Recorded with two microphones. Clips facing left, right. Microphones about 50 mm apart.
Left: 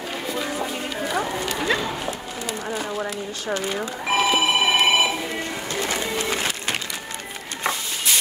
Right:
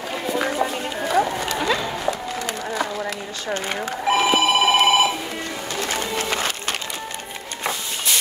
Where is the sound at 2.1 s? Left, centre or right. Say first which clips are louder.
Right 4 dB; right.